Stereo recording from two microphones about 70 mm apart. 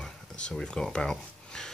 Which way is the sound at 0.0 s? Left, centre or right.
Centre.